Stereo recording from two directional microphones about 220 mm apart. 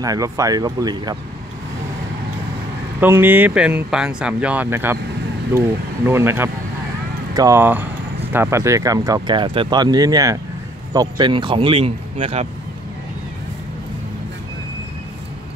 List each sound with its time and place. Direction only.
0.0 s speech: 15° right (ahead or behind)
3.0 s speech: 10° right (ahead or behind); by 12.4 s 25° right (ahead or behind)